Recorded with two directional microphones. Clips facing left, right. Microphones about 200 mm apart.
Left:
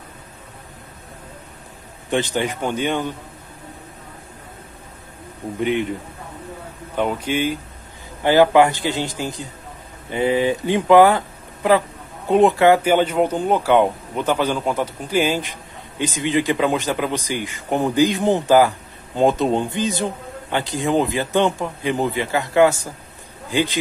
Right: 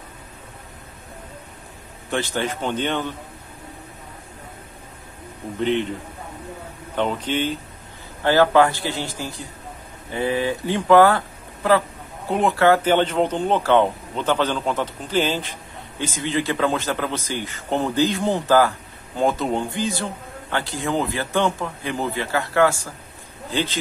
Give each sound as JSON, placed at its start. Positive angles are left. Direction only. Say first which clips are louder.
{"t": 2.0, "sound": "a man's voice", "louder": "left 3 dB", "side_deg": 20}
{"t": 5.6, "sound": "a man's voice", "louder": "left 1 dB", "side_deg": 10}
{"t": 7.0, "sound": "a man's voice", "louder": "left 2 dB", "side_deg": 10}